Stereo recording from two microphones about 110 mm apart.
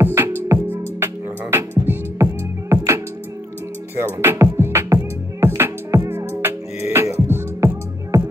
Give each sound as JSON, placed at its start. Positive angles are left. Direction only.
{"t": 0.0, "sound": "music", "side_deg": -20}
{"t": 3.9, "sound": "music", "side_deg": -20}